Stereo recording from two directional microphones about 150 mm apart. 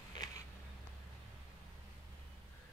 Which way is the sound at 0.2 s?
25° left (ahead or behind).